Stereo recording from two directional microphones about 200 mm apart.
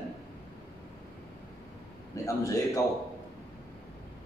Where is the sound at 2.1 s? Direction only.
15° left (ahead or behind).